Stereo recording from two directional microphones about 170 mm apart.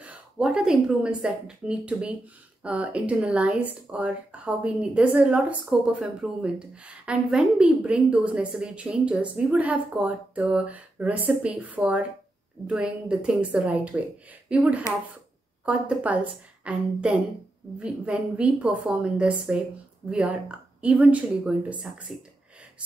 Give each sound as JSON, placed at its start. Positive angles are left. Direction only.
{"t": 0.0, "sound": "a woman's voice", "side_deg": -5}